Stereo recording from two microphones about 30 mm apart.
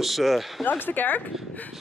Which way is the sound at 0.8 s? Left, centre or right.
Left.